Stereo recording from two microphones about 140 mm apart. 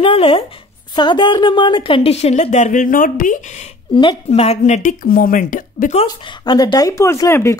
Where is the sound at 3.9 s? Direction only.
35° left (ahead or behind).